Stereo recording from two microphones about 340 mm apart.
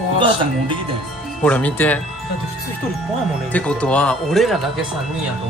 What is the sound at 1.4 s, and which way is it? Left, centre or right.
Speech, centre.